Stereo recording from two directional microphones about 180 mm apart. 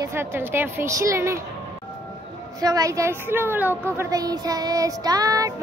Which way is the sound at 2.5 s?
20° right (ahead or behind).